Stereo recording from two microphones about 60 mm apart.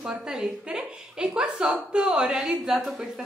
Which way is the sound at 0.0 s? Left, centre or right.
Centre.